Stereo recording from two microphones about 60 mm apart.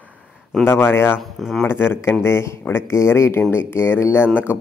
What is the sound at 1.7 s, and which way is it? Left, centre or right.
Speech, left.